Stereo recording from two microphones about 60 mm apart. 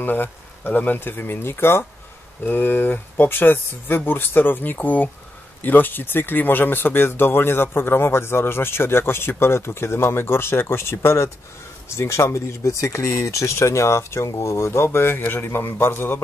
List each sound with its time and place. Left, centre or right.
0.0 s speech: left